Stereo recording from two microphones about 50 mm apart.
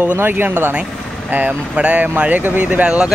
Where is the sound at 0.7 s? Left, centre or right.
Right.